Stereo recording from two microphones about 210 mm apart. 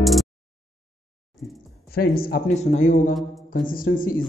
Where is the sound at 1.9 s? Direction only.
45° left (ahead or behind).